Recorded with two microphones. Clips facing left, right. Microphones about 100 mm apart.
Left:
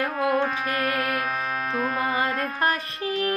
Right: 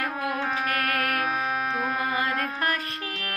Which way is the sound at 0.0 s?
30° left (ahead or behind).